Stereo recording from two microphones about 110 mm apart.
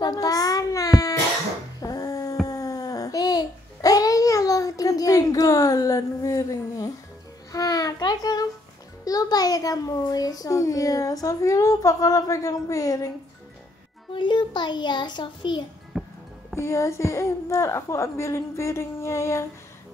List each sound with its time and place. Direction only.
0.0 s child singing: 35° left (ahead or behind)
1.8 s a sound: 35° left (ahead or behind)
2.4 s babbling: 35° left (ahead or behind)
7.5 s a sound: 35° left (ahead or behind)
9.0 s child singing: 35° left (ahead or behind)
14.1 s a child's voice: 45° left (ahead or behind)
15.9 s music: 5° right (ahead or behind)
16.5 s a woman's voice: 25° left (ahead or behind)